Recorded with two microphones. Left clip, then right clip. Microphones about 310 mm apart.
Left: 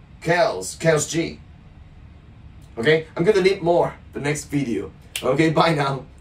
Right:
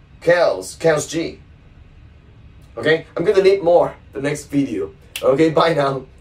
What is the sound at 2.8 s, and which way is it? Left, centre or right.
Speech, centre.